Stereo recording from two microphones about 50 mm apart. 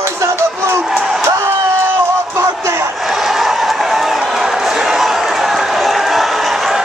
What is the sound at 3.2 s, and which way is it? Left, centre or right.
Music, centre.